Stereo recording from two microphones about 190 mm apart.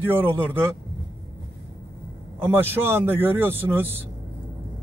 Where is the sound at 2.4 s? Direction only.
10° right (ahead or behind).